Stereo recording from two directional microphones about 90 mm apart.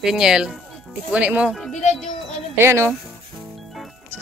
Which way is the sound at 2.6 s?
30° right (ahead or behind).